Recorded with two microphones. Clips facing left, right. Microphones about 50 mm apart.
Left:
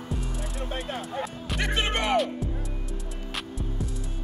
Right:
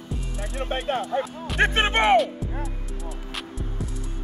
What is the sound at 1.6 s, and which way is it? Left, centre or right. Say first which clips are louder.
Speech: right 7 dB; right.